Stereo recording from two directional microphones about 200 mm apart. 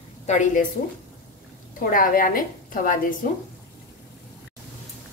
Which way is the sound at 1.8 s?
45° left (ahead or behind).